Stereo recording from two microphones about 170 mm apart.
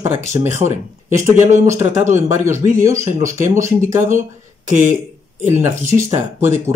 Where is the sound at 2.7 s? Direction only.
15° right (ahead or behind).